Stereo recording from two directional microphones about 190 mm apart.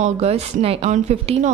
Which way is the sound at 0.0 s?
35° right (ahead or behind).